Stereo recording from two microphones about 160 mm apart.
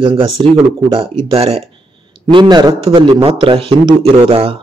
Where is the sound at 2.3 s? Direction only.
25° right (ahead or behind).